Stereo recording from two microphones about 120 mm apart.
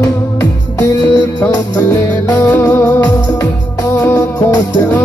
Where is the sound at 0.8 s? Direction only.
30° left (ahead or behind).